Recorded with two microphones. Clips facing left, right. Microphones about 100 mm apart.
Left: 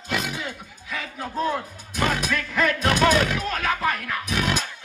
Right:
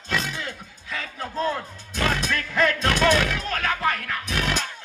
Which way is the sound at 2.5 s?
15° left (ahead or behind).